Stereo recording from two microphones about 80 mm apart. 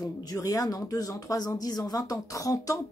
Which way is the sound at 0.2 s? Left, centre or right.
Left.